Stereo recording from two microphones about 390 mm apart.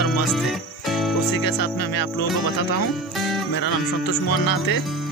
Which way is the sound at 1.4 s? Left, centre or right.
Left.